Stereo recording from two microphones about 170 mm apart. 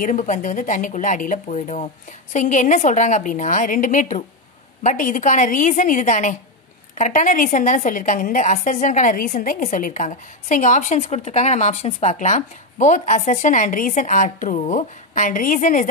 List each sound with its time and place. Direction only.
0.0 s a woman's voice: 50° left (ahead or behind)